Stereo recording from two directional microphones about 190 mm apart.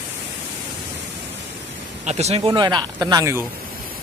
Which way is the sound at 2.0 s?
35° right (ahead or behind).